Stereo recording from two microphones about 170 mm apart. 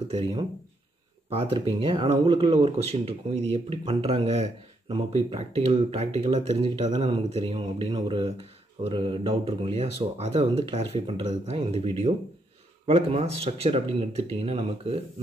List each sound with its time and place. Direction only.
0.1 s speech: 35° right (ahead or behind)